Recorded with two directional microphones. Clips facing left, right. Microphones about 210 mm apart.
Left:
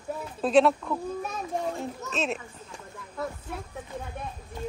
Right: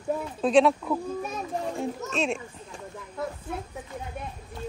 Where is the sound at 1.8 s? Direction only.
Centre (ahead or behind).